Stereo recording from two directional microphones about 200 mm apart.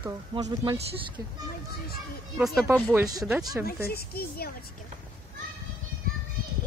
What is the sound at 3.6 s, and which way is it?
Speech, 50° left (ahead or behind).